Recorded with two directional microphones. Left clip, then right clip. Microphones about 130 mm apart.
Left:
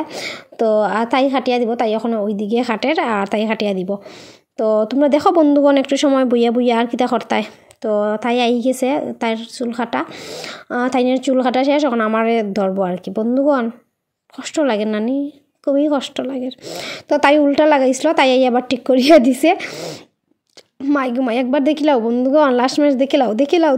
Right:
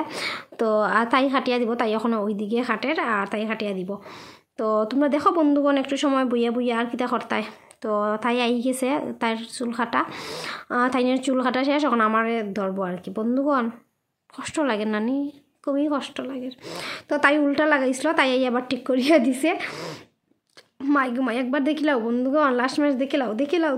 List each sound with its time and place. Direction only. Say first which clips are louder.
0.2 s speech: left 7 dB; 20° left (ahead or behind); by 4.0 s 40° left (ahead or behind)
4.6 s speech: left 7 dB; 30° left (ahead or behind)
10.0 s speech: left 2 dB; 10° left (ahead or behind)
10.4 s speech: left 2 dB; 25° left (ahead or behind)
12.3 s a woman's voice: left 9 dB; 40° left (ahead or behind)
19.7 s speech: left 6 dB; 25° left (ahead or behind)
21.3 s a woman's voice: left 8 dB; 35° left (ahead or behind)